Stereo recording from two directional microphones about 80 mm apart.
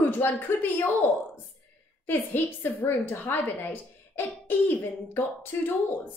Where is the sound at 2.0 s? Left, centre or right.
Left.